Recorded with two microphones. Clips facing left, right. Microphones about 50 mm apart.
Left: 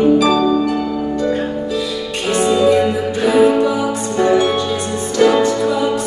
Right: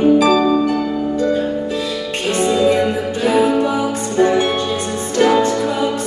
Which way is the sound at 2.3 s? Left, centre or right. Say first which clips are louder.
Left 2 dB; left.